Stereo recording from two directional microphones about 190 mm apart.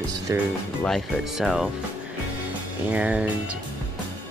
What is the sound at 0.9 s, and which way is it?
Speech, centre (ahead or behind).